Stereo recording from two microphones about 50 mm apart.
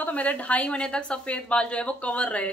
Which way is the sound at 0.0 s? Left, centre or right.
Left.